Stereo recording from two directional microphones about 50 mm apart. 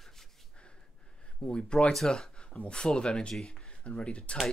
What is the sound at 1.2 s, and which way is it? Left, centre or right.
Speech, centre.